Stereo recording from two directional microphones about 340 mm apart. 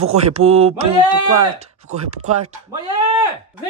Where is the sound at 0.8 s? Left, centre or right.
Right.